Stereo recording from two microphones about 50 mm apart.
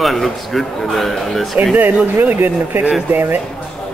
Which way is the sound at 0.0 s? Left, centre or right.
Centre.